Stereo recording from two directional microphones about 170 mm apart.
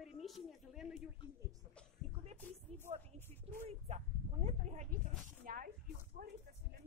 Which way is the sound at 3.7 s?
40° right (ahead or behind).